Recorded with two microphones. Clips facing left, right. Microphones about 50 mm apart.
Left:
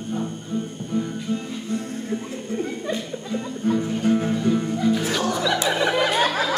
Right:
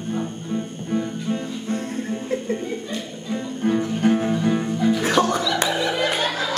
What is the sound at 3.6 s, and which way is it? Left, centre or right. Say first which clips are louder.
Music: right 1 dB; right.